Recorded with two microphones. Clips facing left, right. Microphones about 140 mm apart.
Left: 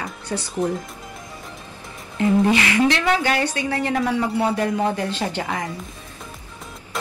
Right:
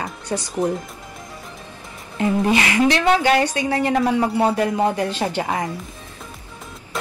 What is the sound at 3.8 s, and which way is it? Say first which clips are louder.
Speech: right 3 dB; 25° right (ahead or behind).